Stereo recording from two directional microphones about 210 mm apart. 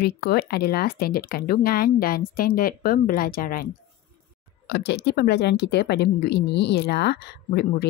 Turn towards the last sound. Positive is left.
turn(degrees=50)  # may be behind; listen again after turning